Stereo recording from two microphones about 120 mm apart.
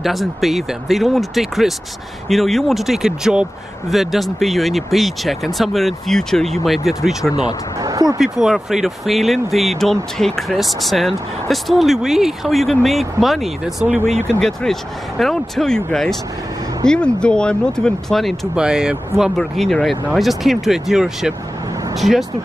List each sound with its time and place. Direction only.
0.0 s speech: centre (ahead or behind)
7.8 s speech: 30° right (ahead or behind)
8.2 s speech: 5° right (ahead or behind)
13.9 s speech: 65° right (ahead or behind)
14.4 s speech: 5° left (ahead or behind)